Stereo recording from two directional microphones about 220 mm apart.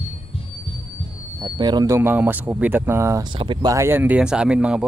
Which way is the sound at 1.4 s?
20° right (ahead or behind).